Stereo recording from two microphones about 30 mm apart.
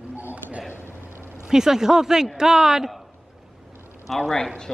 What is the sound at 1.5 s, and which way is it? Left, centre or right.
Speech, centre.